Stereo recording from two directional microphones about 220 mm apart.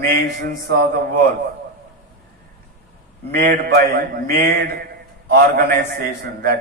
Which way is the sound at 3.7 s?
45° right (ahead or behind).